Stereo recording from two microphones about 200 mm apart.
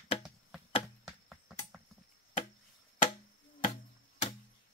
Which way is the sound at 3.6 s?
35° left (ahead or behind).